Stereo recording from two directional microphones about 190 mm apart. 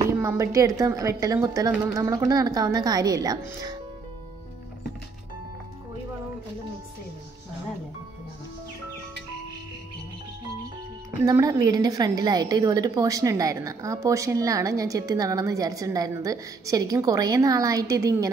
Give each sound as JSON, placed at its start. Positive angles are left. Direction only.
{"t": 0.0, "sound": "a woman's voice", "side_deg": -15}
{"t": 11.2, "sound": "a woman's voice", "side_deg": -20}